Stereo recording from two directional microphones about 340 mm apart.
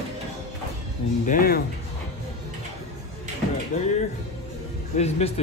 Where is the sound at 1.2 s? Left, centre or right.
Left.